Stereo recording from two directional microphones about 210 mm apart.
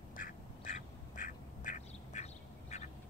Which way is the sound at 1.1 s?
40° left (ahead or behind).